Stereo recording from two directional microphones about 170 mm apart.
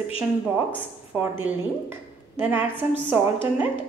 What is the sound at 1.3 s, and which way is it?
A woman's voice, 15° right (ahead or behind).